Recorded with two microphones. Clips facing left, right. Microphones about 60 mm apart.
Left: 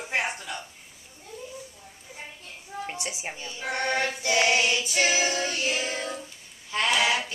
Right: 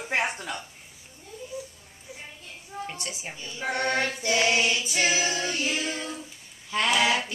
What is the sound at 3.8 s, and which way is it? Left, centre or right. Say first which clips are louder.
Choir: left 1 dB; centre.